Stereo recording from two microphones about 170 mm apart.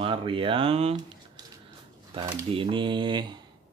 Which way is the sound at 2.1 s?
30° right (ahead or behind).